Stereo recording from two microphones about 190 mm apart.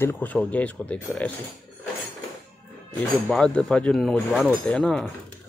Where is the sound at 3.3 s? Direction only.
5° left (ahead or behind).